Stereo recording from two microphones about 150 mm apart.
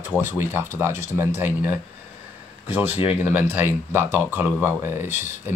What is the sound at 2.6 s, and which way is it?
Speech, 10° right (ahead or behind).